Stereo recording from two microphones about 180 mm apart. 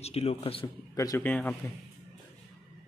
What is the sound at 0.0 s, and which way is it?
Speech, 35° left (ahead or behind).